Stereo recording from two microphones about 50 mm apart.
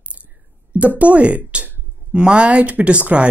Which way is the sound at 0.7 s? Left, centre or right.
Right.